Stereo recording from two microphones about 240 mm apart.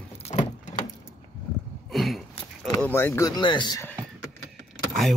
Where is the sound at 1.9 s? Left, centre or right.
Centre.